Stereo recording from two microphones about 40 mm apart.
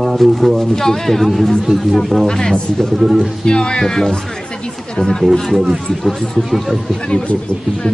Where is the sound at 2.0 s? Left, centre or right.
Centre.